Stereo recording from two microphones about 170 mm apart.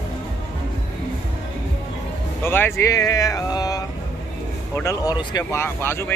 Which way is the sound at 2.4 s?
15° left (ahead or behind).